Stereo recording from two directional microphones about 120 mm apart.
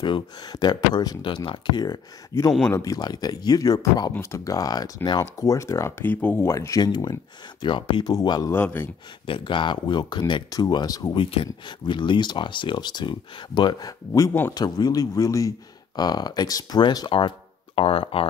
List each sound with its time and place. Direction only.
0.0 s speech: 40° left (ahead or behind)
2.3 s speech: 30° left (ahead or behind)
8.5 s speech: 15° left (ahead or behind)
9.2 s speech: 45° left (ahead or behind)
11.1 s speech: 45° left (ahead or behind)
17.7 s speech: 50° left (ahead or behind)